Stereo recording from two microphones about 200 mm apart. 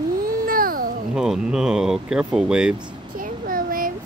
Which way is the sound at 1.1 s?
5° right (ahead or behind).